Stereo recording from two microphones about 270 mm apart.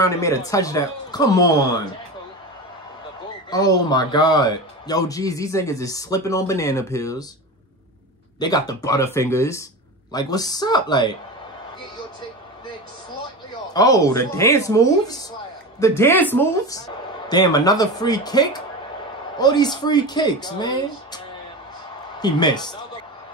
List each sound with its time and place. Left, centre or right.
0.0 s speech: centre
3.4 s speech: centre
8.4 s speech: centre
13.7 s speech: centre
22.2 s speech: centre